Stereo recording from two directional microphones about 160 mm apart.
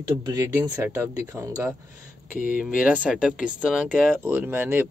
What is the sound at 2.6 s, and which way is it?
Speech, 5° right (ahead or behind).